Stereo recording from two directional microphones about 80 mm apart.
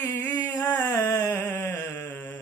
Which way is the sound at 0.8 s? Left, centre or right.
Left.